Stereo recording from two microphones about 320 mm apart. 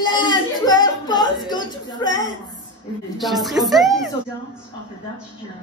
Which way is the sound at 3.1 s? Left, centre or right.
Centre.